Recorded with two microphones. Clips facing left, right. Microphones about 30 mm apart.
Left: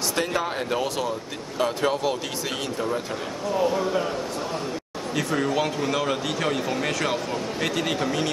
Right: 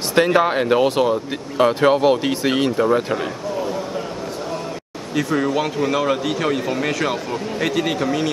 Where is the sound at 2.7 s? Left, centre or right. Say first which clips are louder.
Right 9 dB; right.